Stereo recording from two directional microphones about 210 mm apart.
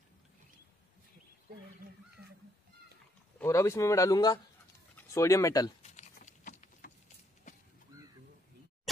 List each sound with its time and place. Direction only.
3.3 s speech: 15° left (ahead or behind)
5.8 s patter: 35° left (ahead or behind)
7.5 s a sound: 35° left (ahead or behind)